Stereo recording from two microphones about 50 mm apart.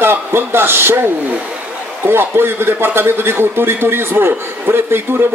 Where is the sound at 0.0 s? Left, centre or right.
Right.